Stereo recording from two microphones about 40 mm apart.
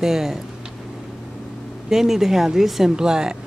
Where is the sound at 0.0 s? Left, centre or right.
Centre.